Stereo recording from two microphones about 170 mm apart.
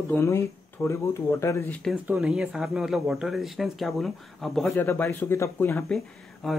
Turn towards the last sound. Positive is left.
turn(degrees=0)  # may be behind; listen again after turning